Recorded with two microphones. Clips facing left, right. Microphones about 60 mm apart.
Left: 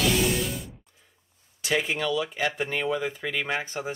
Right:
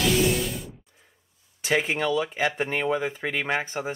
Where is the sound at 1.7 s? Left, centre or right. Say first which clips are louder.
Right 2 dB; right.